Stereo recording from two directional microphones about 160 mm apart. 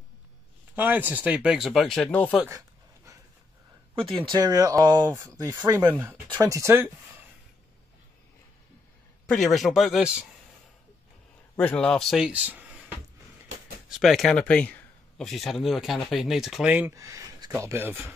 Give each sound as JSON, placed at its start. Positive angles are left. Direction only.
{"t": 0.7, "sound": "speech", "side_deg": -10}
{"t": 3.9, "sound": "speech", "side_deg": -35}
{"t": 9.2, "sound": "speech", "side_deg": 5}
{"t": 11.5, "sound": "speech", "side_deg": 5}
{"t": 13.8, "sound": "speech", "side_deg": 0}